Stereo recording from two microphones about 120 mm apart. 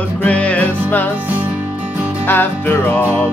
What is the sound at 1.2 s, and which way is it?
Music, 15° right (ahead or behind).